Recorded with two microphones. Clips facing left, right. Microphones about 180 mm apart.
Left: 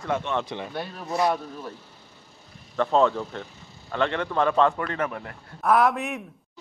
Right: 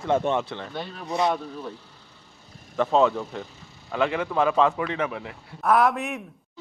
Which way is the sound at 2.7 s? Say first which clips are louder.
Even; 5° right (ahead or behind).